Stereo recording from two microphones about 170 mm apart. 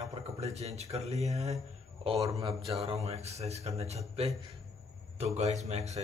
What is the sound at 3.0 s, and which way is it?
Speech, 40° right (ahead or behind).